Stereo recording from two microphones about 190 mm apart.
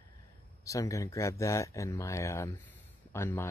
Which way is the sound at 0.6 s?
15° left (ahead or behind).